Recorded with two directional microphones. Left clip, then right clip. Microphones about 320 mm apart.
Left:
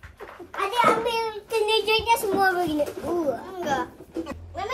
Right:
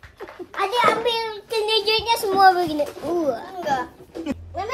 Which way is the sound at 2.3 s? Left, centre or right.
Centre.